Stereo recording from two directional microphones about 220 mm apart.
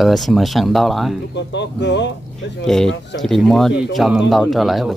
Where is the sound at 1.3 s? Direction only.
55° left (ahead or behind).